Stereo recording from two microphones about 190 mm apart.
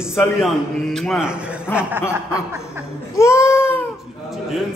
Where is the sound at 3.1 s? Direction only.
15° left (ahead or behind).